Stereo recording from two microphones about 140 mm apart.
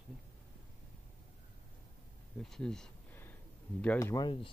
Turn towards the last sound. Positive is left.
turn(degrees=20)  # may be behind; listen again after turning